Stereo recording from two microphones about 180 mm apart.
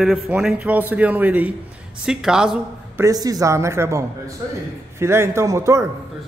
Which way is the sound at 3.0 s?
20° right (ahead or behind).